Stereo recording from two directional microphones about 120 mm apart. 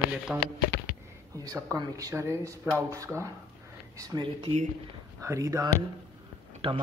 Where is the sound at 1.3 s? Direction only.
30° right (ahead or behind).